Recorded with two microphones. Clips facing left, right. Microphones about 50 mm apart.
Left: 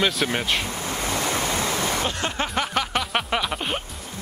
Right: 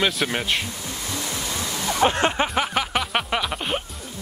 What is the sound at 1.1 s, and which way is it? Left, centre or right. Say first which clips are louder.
Waves: left 5 dB; left.